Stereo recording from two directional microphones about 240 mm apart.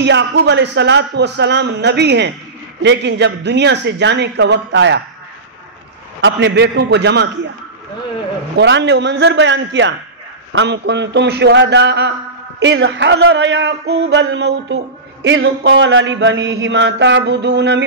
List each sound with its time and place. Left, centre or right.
0.0 s mantra: right
6.2 s mantra: right
8.5 s mantra: right